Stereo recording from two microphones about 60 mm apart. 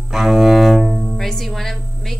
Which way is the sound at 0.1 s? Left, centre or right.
Centre.